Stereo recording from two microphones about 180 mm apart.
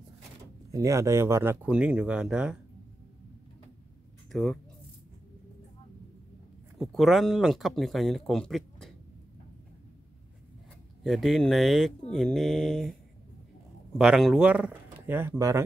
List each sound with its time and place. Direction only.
0.7 s speech: 15° right (ahead or behind)
4.3 s speech: centre (ahead or behind)
6.8 s speech: centre (ahead or behind)
11.1 s speech: centre (ahead or behind)
13.9 s speech: centre (ahead or behind)